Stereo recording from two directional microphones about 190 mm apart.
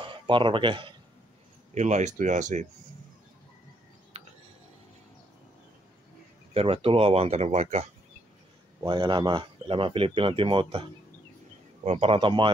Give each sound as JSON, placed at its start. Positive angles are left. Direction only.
{"t": 0.0, "sound": "speech", "side_deg": -25}
{"t": 1.7, "sound": "speech", "side_deg": -35}
{"t": 6.5, "sound": "speech", "side_deg": -30}
{"t": 8.8, "sound": "speech", "side_deg": -25}